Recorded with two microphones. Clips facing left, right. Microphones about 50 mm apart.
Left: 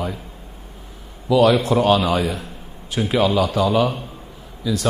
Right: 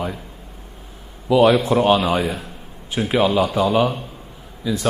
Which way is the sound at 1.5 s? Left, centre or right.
Centre.